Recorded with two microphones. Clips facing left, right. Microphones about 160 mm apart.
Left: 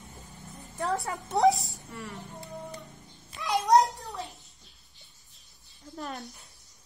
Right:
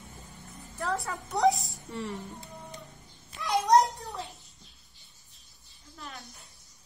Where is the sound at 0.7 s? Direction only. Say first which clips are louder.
Left 2 dB; 20° left (ahead or behind).